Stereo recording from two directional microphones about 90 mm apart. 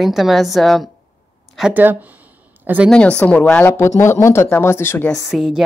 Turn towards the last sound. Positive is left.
turn(degrees=-5)  # may be behind; listen again after turning